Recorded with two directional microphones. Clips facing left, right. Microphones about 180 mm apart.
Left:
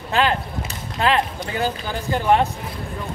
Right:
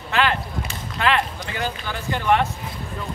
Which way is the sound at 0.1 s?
30° left (ahead or behind).